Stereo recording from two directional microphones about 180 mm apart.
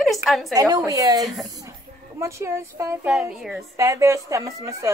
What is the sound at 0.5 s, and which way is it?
Speech, 20° right (ahead or behind).